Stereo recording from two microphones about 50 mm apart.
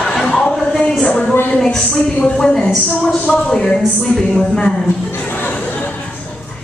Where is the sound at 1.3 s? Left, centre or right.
Left.